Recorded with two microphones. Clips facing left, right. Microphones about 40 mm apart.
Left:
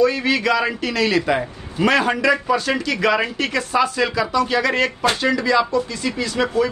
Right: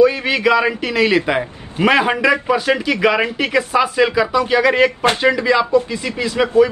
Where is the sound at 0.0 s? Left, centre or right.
Centre.